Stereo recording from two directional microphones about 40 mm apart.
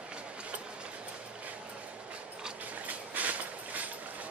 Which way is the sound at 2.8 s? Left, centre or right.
Right.